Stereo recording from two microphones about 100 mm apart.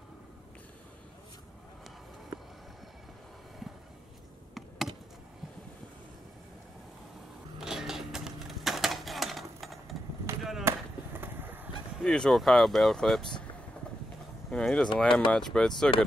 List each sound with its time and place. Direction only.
4.6 s a sound: centre (ahead or behind)
7.6 s typewriter: 5° right (ahead or behind)
10.3 s a sound: 25° right (ahead or behind)
10.7 s chop: 25° right (ahead or behind)
11.1 s vehicle: 20° right (ahead or behind)
12.0 s speech: 5° left (ahead or behind)
14.5 s speech: 10° left (ahead or behind)